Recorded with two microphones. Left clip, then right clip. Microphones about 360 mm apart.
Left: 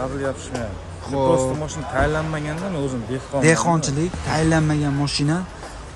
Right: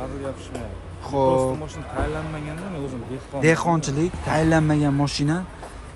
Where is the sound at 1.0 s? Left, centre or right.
Centre.